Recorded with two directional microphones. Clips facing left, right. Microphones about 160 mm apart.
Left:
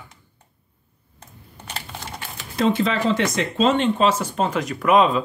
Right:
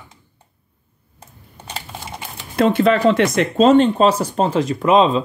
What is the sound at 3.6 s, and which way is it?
Speech, 40° right (ahead or behind).